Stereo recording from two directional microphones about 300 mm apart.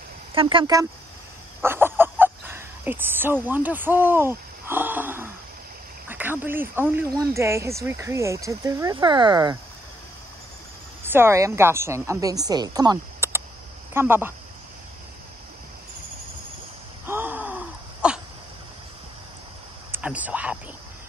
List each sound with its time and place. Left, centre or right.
0.3 s speech: centre
1.6 s fowl: centre
6.0 s speech: centre
11.1 s speech: centre
17.0 s wheeze: centre
19.9 s a sound: centre